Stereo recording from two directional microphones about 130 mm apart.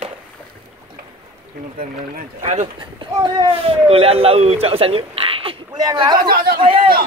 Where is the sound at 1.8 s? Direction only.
75° right (ahead or behind).